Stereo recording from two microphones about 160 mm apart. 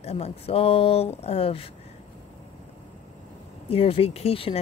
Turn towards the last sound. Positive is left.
turn(degrees=35)  # may be behind; listen again after turning